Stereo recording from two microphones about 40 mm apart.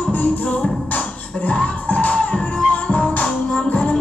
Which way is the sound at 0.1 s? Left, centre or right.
Left.